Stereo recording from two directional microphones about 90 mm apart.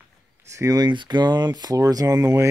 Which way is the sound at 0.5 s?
40° right (ahead or behind).